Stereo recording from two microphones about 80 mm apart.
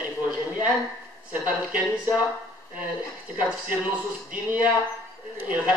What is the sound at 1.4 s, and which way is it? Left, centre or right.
Speech, right.